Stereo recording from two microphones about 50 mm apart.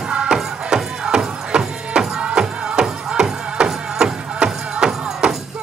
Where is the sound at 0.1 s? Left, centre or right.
Centre.